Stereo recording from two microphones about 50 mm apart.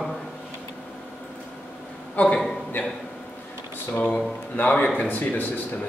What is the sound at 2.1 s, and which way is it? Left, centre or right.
Speech, left.